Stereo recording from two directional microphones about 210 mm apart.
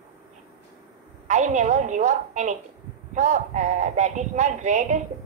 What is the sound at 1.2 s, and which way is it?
A woman's voice, 35° right (ahead or behind).